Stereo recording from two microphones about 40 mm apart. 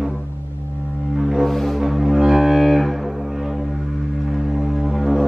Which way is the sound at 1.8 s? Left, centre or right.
Centre.